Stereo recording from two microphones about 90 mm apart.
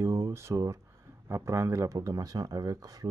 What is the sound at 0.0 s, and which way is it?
Speech, 40° right (ahead or behind).